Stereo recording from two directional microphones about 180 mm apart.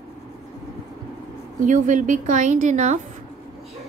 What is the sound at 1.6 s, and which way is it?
A woman's voice, 45° right (ahead or behind).